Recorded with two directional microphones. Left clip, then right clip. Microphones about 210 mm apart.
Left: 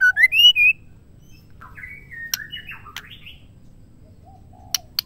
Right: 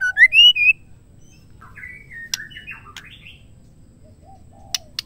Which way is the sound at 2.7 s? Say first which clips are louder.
Right 1 dB; 55° left (ahead or behind).